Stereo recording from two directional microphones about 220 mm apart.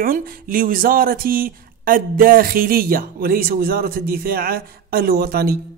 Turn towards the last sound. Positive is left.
turn(degrees=-45)  # may be behind; listen again after turning